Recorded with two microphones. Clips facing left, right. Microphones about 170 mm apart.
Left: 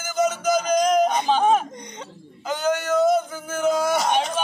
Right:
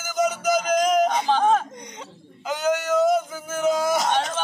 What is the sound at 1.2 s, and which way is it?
Whimper, 15° left (ahead or behind).